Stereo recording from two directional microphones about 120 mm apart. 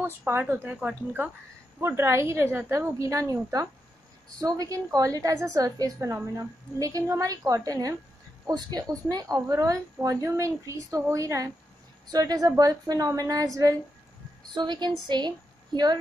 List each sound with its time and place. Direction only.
0.0 s speech: 15° right (ahead or behind)
1.8 s a woman's voice: 20° right (ahead or behind)
9.1 s a woman's voice: 30° right (ahead or behind)
14.5 s a woman's voice: 40° right (ahead or behind)